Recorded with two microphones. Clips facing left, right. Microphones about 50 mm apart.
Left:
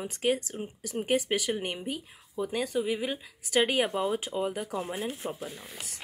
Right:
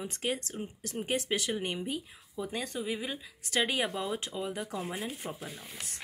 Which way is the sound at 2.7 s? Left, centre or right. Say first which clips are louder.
Left 7 dB; centre.